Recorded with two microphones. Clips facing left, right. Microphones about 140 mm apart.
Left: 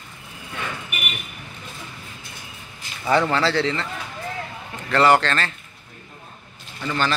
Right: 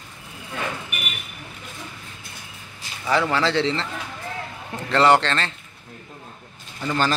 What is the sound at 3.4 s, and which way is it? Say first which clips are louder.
Speech: even; 20° right (ahead or behind).